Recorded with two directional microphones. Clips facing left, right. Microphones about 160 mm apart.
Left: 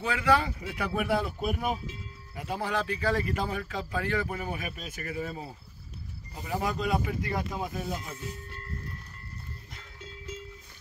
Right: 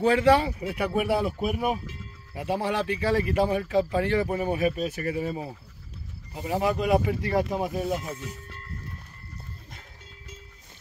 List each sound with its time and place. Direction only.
0.0 s speech: 30° right (ahead or behind)
1.0 s speech: 10° right (ahead or behind)
2.3 s speech: 25° right (ahead or behind)
7.2 s speech: 30° right (ahead or behind)